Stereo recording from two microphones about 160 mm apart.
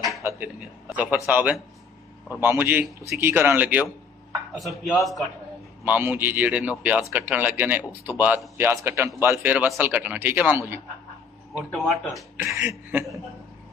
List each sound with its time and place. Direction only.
0.8 s speech: 5° right (ahead or behind)
4.6 s speech: centre (ahead or behind)
5.9 s speech: 10° right (ahead or behind)
11.7 s speech: centre (ahead or behind)
12.5 s speech: 15° right (ahead or behind)